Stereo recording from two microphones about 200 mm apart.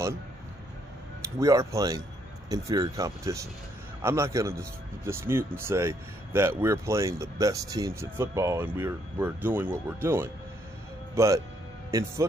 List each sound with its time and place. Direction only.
1.4 s speech: 15° right (ahead or behind)